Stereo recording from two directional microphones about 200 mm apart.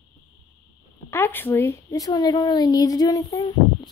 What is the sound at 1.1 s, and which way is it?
Speech, 10° left (ahead or behind).